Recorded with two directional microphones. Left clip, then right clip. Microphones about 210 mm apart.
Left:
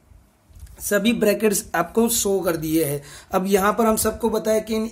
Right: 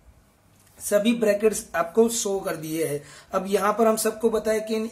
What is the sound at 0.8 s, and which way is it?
Speech, 45° left (ahead or behind).